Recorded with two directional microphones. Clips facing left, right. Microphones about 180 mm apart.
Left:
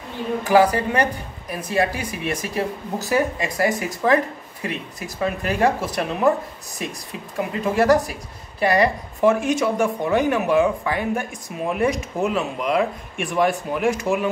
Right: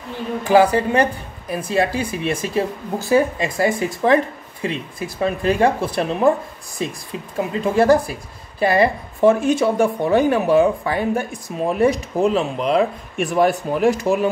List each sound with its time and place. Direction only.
0.4 s a woman's voice: 25° right (ahead or behind)